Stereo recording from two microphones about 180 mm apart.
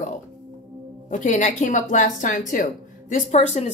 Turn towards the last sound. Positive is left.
turn(degrees=40)  # may be behind; listen again after turning